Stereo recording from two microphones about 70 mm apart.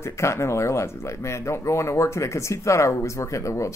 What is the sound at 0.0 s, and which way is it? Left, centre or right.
Speech, left.